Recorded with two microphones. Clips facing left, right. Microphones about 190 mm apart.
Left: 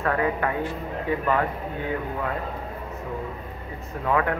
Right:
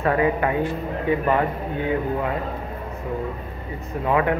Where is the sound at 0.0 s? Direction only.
15° right (ahead or behind).